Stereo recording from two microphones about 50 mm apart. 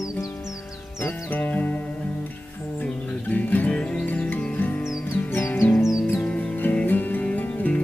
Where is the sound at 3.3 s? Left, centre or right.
Left.